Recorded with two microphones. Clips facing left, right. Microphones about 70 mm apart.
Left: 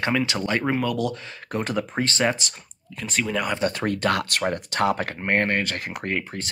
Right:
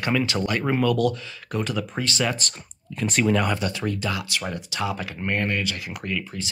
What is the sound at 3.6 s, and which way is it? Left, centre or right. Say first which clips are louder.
Speech: left 3 dB; left.